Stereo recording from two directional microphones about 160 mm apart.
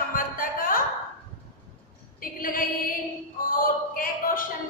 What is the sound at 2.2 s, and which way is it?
Female singing, 60° left (ahead or behind).